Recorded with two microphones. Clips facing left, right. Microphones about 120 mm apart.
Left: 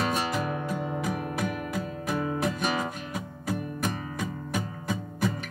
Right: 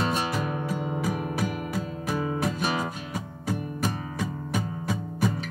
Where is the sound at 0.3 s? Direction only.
5° right (ahead or behind).